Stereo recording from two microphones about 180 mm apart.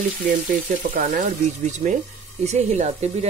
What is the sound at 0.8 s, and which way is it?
Speech, 50° right (ahead or behind).